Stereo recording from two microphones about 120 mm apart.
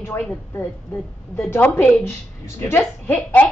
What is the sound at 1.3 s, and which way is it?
A child's voice, 20° left (ahead or behind).